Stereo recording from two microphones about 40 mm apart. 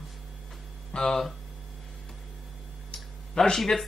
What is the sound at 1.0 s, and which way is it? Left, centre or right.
Speech, centre.